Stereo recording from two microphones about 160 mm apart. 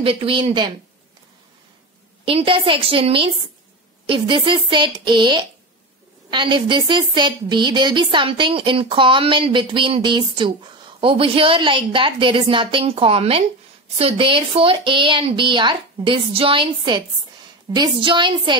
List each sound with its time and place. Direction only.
0.0 s speech: 35° right (ahead or behind)
2.2 s speech: 35° right (ahead or behind)